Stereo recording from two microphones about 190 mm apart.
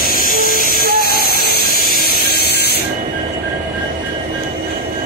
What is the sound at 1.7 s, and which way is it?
Printer, 50° left (ahead or behind).